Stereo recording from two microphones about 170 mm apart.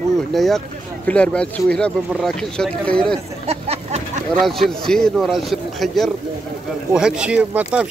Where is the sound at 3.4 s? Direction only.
35° right (ahead or behind).